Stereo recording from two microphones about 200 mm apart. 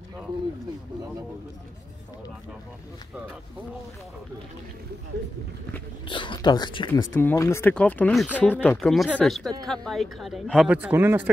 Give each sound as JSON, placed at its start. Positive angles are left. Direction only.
{"t": 6.0, "sound": "speech", "side_deg": 25}
{"t": 7.2, "sound": "a man's voice", "side_deg": 10}